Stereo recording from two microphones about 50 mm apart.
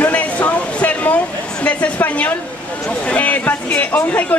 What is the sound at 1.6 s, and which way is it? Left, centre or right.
A woman's voice, left.